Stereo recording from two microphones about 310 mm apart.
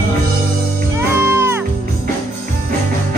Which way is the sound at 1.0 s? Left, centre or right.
Centre.